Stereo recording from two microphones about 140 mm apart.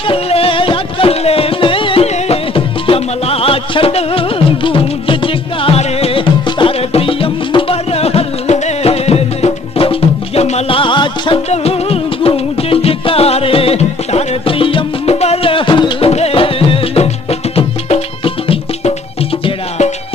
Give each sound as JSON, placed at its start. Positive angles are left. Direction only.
{"t": 0.1, "sound": "music", "side_deg": 40}